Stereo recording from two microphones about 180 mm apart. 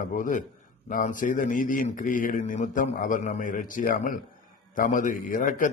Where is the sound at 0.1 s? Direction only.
45° left (ahead or behind).